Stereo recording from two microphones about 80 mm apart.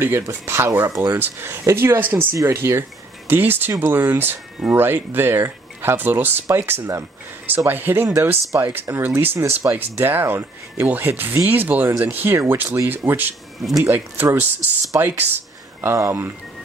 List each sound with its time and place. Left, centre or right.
0.0 s speech: right
6.8 s speech: right
7.5 s speech: right
13.6 s speech: centre
13.8 s speech: right